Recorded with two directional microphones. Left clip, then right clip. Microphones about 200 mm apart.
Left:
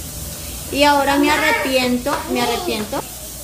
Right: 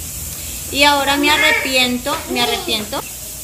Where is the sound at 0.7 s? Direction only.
10° left (ahead or behind).